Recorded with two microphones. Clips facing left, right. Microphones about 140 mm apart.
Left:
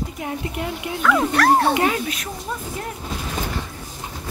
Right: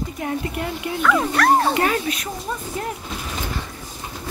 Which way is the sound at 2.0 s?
Centre (ahead or behind).